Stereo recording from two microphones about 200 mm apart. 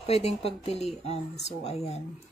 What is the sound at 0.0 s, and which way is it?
Speech, 30° left (ahead or behind).